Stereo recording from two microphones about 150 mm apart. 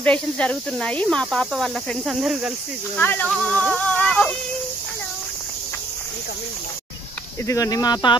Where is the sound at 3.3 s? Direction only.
5° left (ahead or behind).